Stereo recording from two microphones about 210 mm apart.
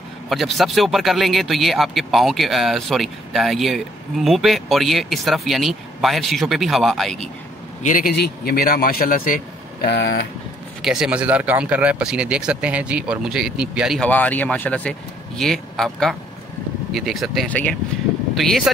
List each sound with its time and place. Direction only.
0.3 s speech: centre (ahead or behind)
7.8 s a man's voice: 40° left (ahead or behind)
10.8 s speech: centre (ahead or behind)